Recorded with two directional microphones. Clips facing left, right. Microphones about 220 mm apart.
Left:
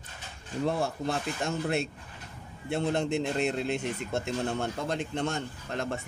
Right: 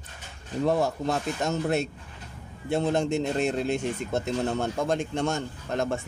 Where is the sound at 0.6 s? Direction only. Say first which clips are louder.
Right 5 dB; 40° right (ahead or behind).